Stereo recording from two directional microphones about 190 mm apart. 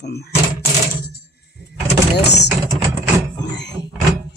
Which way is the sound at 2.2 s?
65° left (ahead or behind).